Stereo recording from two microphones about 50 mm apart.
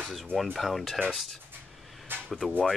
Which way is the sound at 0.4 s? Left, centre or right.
Centre.